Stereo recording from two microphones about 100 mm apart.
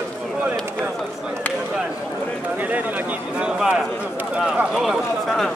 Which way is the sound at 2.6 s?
15° right (ahead or behind).